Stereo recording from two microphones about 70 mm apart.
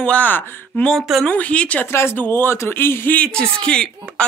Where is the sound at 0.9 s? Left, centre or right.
Centre.